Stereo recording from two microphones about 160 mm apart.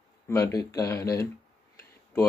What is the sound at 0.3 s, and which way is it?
Speech, 20° left (ahead or behind).